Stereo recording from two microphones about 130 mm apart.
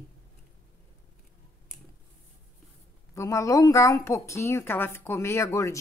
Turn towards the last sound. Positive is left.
turn(degrees=20)  # may be behind; listen again after turning